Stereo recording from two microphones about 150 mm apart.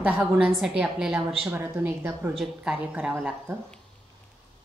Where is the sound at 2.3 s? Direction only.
5° right (ahead or behind).